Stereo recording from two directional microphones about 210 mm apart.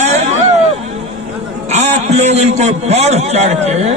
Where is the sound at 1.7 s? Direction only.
30° right (ahead or behind).